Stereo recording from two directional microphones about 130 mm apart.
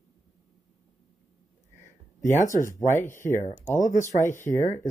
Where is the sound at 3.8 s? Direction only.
70° left (ahead or behind).